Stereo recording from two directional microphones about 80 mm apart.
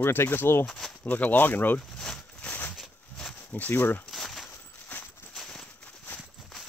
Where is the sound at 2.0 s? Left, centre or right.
Centre.